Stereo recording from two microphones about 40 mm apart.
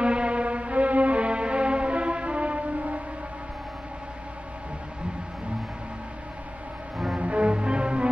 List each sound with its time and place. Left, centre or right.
0.0 s music: right
7.2 s music: right